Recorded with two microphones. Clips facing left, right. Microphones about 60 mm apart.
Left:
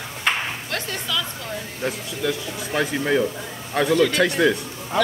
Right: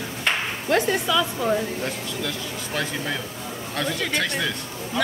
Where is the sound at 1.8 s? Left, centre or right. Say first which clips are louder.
Left 3 dB; centre.